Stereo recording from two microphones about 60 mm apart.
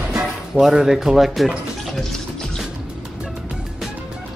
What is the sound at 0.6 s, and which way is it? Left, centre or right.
Speech, centre.